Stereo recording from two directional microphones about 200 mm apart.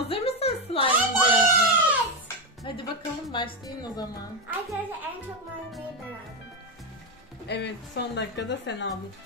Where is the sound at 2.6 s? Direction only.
25° left (ahead or behind).